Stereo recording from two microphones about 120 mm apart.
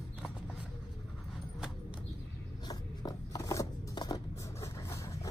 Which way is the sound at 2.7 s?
30° left (ahead or behind).